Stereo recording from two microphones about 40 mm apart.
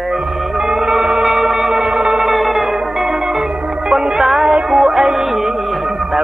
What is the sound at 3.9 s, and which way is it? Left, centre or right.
Music, centre.